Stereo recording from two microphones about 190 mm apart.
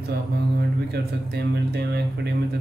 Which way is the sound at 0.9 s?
60° right (ahead or behind).